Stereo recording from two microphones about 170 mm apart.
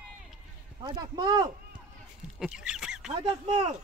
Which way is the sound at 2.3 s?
5° right (ahead or behind).